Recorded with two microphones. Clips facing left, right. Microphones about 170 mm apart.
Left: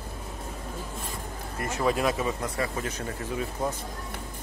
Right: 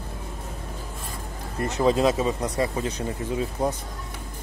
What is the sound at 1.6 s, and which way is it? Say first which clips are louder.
Speech: right 5 dB; 25° right (ahead or behind).